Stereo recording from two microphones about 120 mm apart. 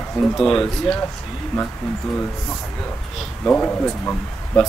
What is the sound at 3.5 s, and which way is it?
Speech, 10° left (ahead or behind).